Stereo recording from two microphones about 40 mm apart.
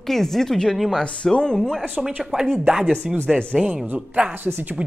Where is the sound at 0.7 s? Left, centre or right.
Centre.